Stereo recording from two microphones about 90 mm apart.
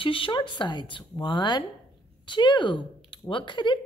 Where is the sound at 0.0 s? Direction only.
75° left (ahead or behind).